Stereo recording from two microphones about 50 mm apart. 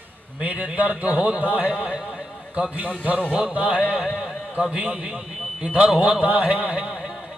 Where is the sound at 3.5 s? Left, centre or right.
Right.